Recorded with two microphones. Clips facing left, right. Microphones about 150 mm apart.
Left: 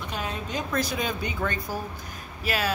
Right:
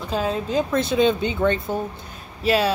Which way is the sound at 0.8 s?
25° right (ahead or behind).